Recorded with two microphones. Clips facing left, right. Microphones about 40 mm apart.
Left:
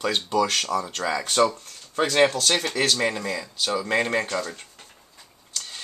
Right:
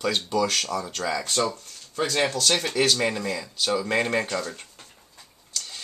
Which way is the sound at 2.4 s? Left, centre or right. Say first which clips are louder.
Even; centre.